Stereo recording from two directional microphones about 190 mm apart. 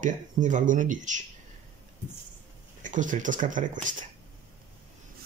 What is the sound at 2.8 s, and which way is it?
Speech, 40° right (ahead or behind).